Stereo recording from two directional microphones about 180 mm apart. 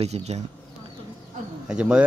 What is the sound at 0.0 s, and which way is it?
Speech, 35° right (ahead or behind).